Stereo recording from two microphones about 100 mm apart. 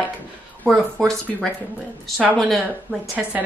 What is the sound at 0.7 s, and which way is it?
Speech, centre (ahead or behind).